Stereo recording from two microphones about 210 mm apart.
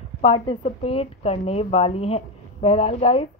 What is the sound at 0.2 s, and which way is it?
Speech, 25° left (ahead or behind).